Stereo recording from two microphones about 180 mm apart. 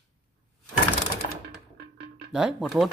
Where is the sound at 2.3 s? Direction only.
Centre (ahead or behind).